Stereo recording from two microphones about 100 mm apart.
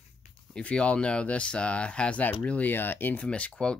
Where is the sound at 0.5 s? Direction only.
10° left (ahead or behind).